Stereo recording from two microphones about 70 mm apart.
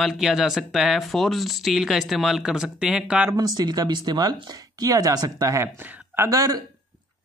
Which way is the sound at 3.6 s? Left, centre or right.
Right.